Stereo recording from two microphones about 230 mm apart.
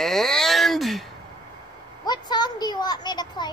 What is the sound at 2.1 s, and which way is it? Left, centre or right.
A child's voice, centre.